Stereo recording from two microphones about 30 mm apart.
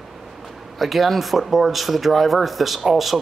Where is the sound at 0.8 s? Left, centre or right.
Centre.